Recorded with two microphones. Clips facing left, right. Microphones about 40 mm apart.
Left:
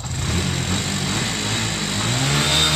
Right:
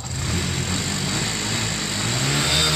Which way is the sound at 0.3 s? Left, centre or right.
Centre.